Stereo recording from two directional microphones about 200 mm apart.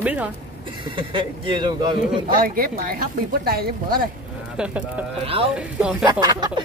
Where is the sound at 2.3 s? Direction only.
45° right (ahead or behind).